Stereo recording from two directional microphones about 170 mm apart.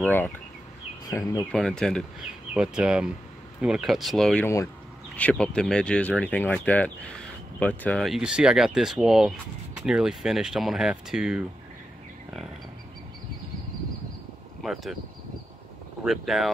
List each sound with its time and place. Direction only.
0.0 s speech: 10° left (ahead or behind)
1.5 s speech: 5° left (ahead or behind)
14.6 s speech: centre (ahead or behind)
16.0 s speech: centre (ahead or behind)